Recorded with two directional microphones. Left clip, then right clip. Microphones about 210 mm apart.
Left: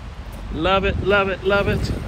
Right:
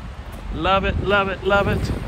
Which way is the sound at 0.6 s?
10° right (ahead or behind).